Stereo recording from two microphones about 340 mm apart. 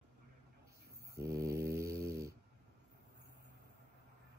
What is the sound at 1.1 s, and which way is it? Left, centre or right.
Mantra, centre.